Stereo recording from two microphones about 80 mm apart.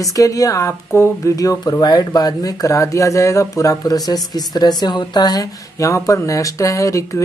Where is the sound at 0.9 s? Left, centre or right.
Left.